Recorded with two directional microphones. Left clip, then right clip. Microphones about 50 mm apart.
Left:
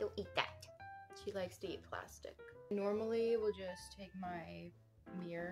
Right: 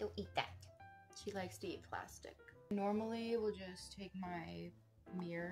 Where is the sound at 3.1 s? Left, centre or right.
Left.